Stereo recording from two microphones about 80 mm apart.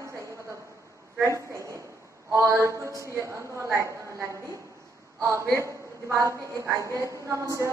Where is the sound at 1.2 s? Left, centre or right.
Right.